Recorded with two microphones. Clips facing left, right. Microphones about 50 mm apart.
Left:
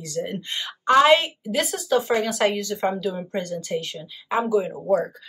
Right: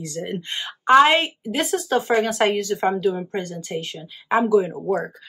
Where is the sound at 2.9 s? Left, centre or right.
Right.